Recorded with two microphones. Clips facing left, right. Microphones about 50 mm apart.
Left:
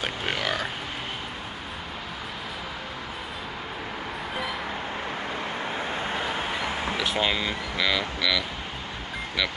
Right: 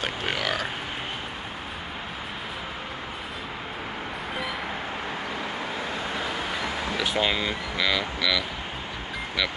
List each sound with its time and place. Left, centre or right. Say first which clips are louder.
0.0 s grunt: even; centre
6.6 s a sound: left 1 dB; left
7.0 s speech: right 2 dB; centre